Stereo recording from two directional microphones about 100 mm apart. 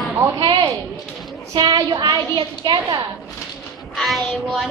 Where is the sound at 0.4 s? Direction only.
50° right (ahead or behind).